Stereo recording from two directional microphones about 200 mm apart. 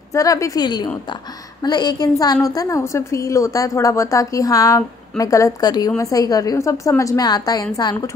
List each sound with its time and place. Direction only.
0.1 s a woman's voice: 15° left (ahead or behind)